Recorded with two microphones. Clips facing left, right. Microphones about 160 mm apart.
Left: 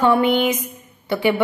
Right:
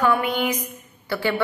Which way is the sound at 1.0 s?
20° left (ahead or behind).